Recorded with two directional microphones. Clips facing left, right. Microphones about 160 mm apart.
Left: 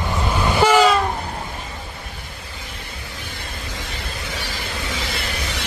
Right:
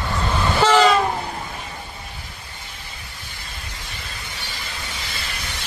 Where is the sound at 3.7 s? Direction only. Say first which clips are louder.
Left 6 dB; 90° left.